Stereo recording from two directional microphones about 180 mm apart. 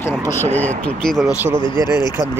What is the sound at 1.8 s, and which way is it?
Speech, 15° right (ahead or behind).